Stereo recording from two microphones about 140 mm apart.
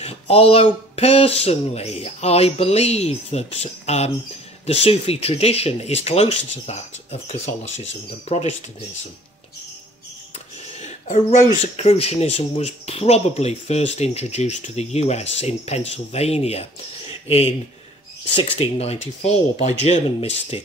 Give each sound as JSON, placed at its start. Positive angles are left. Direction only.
{"t": 0.0, "sound": "speech", "side_deg": 45}
{"t": 10.8, "sound": "a sound", "side_deg": 50}
{"t": 11.6, "sound": "speech", "side_deg": 50}
{"t": 18.3, "sound": "speech", "side_deg": 40}